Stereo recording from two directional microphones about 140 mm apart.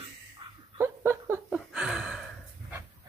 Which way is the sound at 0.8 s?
20° right (ahead or behind).